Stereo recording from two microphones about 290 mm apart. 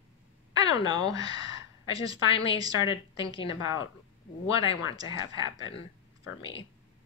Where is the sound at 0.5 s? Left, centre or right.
Centre.